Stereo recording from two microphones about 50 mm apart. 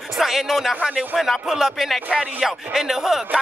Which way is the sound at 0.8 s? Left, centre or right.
Centre.